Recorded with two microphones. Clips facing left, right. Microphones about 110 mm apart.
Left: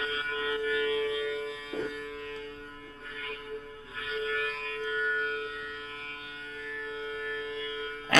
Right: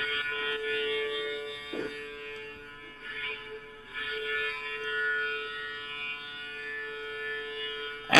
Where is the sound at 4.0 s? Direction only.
25° left (ahead or behind).